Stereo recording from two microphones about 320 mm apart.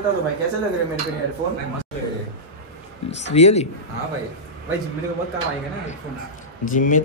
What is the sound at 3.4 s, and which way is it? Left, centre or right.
Speech, centre.